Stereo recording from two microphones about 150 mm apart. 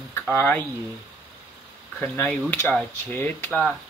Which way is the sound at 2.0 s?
15° left (ahead or behind).